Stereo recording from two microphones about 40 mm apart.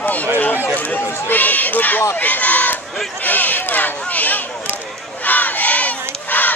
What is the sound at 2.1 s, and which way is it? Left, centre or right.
Crowd, left.